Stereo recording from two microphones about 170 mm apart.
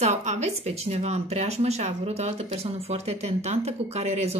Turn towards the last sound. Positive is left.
turn(degrees=-40)  # may be behind; listen again after turning